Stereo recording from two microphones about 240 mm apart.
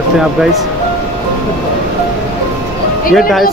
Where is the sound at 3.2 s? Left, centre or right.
Centre.